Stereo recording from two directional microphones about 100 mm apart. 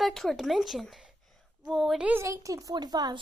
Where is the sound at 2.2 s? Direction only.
35° right (ahead or behind).